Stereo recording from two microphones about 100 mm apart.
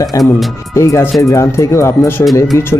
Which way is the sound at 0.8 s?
30° left (ahead or behind).